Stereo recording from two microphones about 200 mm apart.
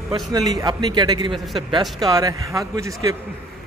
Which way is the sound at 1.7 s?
20° right (ahead or behind).